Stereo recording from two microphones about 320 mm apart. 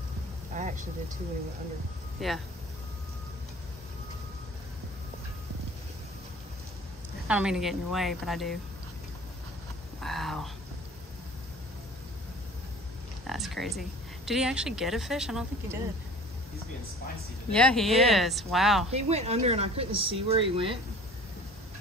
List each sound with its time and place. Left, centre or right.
0.6 s vehicle: right
2.1 s speech: centre
7.2 s speech: centre
9.9 s vehicle: centre
13.3 s speech: centre
17.5 s speech: centre
18.9 s speech: centre